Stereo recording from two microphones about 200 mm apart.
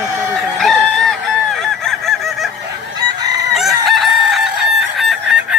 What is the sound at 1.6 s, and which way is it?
Fowl, centre (ahead or behind).